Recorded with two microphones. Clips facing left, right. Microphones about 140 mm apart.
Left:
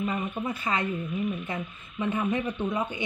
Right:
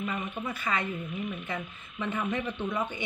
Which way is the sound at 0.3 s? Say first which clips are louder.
Left 3 dB; 20° left (ahead or behind).